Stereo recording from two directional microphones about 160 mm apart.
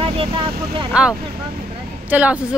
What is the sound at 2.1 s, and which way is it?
Speech, 10° right (ahead or behind).